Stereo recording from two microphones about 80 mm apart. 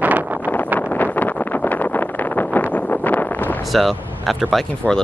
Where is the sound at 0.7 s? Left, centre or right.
Left.